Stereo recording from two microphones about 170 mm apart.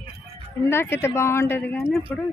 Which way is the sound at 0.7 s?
15° left (ahead or behind).